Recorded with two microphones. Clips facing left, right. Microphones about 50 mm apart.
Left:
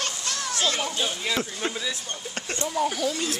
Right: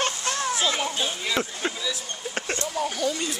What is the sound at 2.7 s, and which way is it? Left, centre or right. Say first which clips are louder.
Speech: left 2 dB; centre.